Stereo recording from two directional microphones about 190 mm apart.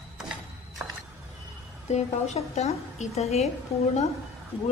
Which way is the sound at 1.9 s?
35° left (ahead or behind).